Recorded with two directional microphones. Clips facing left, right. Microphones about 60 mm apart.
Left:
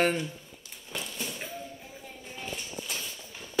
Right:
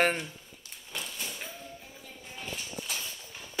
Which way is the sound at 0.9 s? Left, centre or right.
Centre.